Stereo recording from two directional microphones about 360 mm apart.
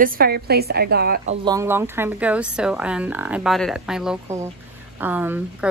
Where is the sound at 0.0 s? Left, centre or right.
Right.